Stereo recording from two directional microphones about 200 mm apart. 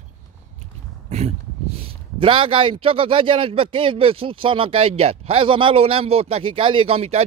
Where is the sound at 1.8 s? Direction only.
25° right (ahead or behind).